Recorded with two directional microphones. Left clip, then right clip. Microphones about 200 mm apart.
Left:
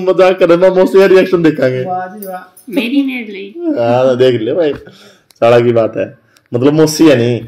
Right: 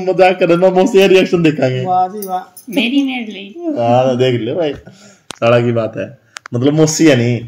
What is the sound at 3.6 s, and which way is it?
Speech, 40° left (ahead or behind).